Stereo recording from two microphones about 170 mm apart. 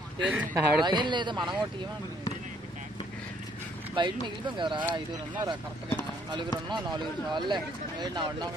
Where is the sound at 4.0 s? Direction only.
25° right (ahead or behind).